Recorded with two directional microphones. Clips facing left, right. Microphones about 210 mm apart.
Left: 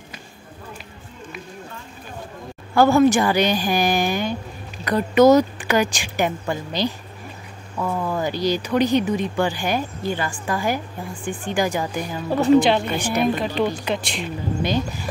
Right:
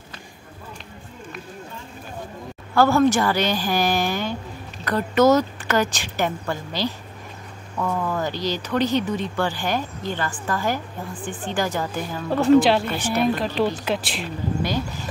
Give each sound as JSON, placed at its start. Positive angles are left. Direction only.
{"t": 2.7, "sound": "speech", "side_deg": 15}
{"t": 12.4, "sound": "a woman's voice", "side_deg": 0}
{"t": 14.6, "sound": "speech", "side_deg": 20}